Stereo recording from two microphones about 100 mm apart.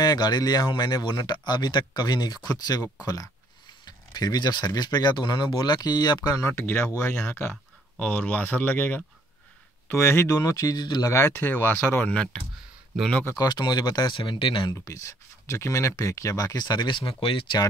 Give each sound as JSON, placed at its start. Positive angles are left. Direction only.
{"t": 0.0, "sound": "speech", "side_deg": 40}
{"t": 6.5, "sound": "speech", "side_deg": 20}
{"t": 11.1, "sound": "speech", "side_deg": 25}
{"t": 12.1, "sound": "speech", "side_deg": 10}
{"t": 13.4, "sound": "speech", "side_deg": 45}
{"t": 14.7, "sound": "speech", "side_deg": 35}